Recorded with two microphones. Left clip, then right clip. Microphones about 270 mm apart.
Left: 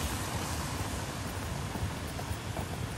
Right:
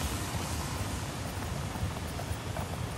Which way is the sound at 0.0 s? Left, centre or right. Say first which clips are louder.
Even; centre.